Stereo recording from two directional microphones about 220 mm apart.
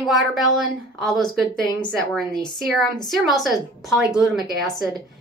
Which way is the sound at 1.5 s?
20° left (ahead or behind).